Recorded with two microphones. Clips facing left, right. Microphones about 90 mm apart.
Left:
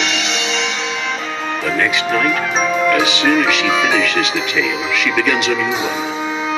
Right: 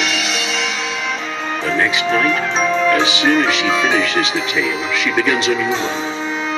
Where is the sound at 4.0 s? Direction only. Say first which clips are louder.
Even; 30° right (ahead or behind).